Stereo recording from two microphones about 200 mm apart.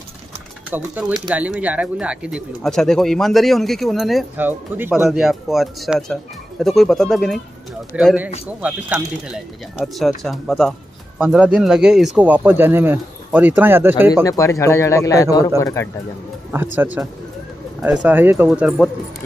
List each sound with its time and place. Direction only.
0.7 s speech: 10° right (ahead or behind)
14.2 s speech: 15° left (ahead or behind)
16.7 s speech: 10° right (ahead or behind)